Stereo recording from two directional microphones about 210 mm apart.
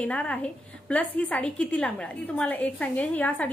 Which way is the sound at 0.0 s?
5° left (ahead or behind).